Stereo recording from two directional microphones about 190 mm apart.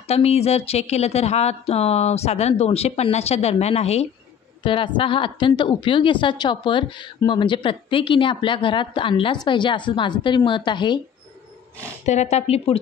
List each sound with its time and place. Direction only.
0.0 s a woman's voice: 35° left (ahead or behind)
12.1 s speech: 35° left (ahead or behind)